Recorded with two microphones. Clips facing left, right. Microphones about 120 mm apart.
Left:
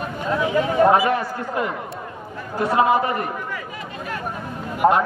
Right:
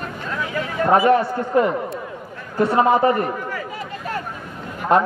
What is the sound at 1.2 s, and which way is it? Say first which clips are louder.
Speech: right 6 dB; 30° right (ahead or behind).